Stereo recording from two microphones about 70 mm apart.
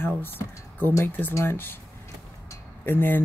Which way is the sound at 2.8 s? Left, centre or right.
Left.